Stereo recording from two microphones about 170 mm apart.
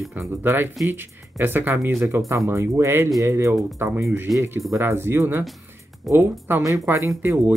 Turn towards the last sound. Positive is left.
turn(degrees=-15)  # may be behind; listen again after turning